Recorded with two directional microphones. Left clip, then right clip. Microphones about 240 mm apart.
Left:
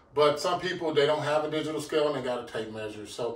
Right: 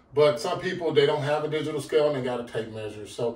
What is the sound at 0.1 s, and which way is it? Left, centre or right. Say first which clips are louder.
A man's voice: right 2 dB; centre.